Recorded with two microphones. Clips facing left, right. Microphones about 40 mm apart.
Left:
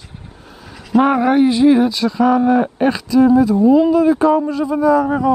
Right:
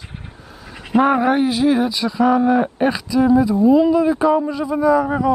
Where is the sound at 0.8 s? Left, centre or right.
Right.